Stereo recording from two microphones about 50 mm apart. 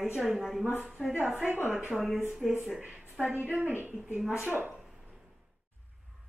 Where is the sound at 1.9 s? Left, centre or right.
Centre.